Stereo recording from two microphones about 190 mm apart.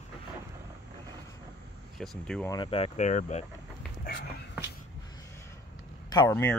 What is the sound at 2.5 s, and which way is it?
Speech, 25° left (ahead or behind).